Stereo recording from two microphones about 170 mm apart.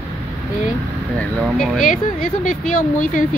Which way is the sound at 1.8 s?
50° left (ahead or behind).